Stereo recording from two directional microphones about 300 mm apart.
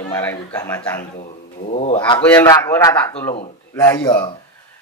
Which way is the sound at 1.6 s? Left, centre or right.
Left.